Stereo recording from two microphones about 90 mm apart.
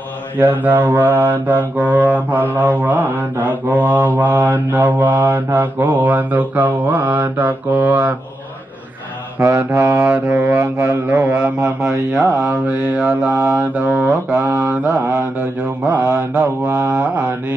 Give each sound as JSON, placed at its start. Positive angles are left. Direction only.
{"t": 0.4, "sound": "mantra", "side_deg": -20}
{"t": 9.4, "sound": "mantra", "side_deg": -30}